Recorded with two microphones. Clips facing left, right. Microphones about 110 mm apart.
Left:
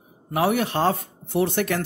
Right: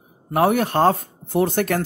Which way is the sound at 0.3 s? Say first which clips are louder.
Right 4 dB; 45° right (ahead or behind).